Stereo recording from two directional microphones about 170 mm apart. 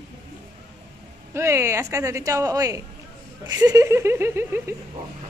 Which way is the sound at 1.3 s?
15° right (ahead or behind).